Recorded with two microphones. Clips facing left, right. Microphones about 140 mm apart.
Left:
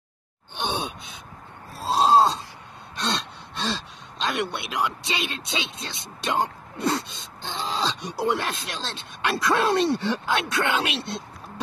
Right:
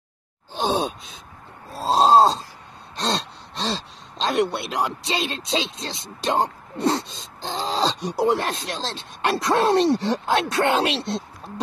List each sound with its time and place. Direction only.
0.6 s groan: 90° right
1.7 s groan: 25° right (ahead or behind)
3.0 s gasp: 35° right (ahead or behind)
4.2 s speech: 35° right (ahead or behind)